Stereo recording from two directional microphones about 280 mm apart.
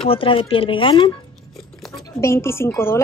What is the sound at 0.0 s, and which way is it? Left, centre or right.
A woman's voice, centre.